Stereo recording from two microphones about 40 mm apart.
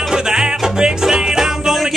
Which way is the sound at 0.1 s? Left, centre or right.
Centre.